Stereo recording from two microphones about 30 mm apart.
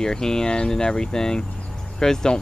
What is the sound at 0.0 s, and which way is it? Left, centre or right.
Speech, centre.